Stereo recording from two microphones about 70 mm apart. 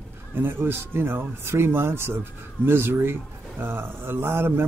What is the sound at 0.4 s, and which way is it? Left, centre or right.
Speech, right.